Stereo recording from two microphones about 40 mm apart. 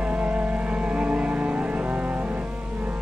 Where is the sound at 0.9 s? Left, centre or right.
Right.